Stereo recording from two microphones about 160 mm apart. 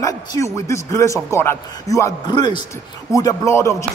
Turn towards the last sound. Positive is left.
turn(degrees=20)  # may be behind; listen again after turning